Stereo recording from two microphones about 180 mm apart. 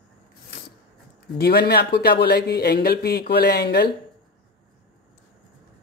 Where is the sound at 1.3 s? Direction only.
65° left (ahead or behind).